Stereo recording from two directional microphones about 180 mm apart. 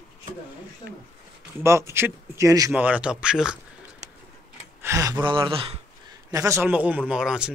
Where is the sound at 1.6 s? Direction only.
15° right (ahead or behind).